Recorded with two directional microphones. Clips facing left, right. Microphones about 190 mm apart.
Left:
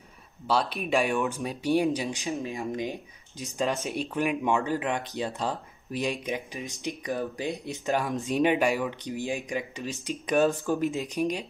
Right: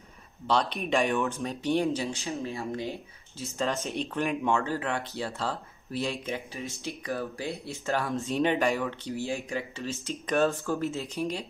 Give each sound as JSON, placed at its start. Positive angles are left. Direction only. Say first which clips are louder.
{"t": 0.5, "sound": "speech", "louder": "even", "side_deg": 5}